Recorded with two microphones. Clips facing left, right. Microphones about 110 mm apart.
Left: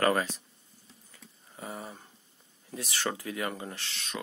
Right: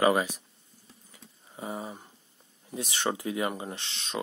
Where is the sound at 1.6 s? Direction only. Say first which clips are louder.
Right 4 dB; 20° right (ahead or behind).